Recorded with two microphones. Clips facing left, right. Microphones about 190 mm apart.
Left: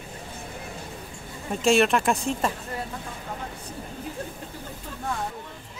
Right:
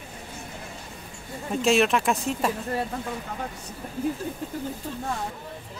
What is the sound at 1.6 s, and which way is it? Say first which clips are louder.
Speech: left 1 dB; centre (ahead or behind).